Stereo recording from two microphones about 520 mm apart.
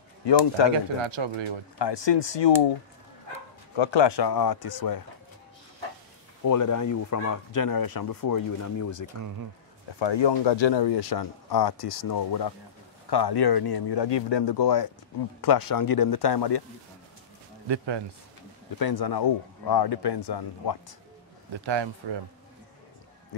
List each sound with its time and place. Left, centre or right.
0.2 s speech: left
1.0 s speech: right
1.8 s speech: left
3.7 s speech: left
6.4 s speech: left
9.9 s speech: left
17.6 s a man's voice: right
18.8 s speech: left
21.5 s a man's voice: right